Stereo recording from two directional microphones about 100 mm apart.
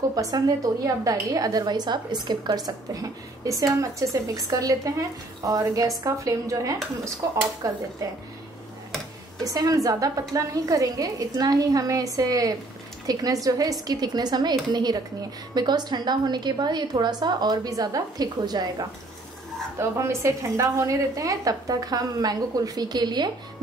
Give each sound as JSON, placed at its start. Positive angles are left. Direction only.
{"t": 0.1, "sound": "a woman's voice", "side_deg": -35}
{"t": 9.4, "sound": "a woman's voice", "side_deg": -35}
{"t": 19.8, "sound": "a woman's voice", "side_deg": -25}